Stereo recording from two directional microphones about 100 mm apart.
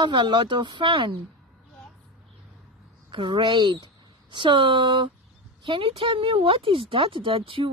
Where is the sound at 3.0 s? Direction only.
55° right (ahead or behind).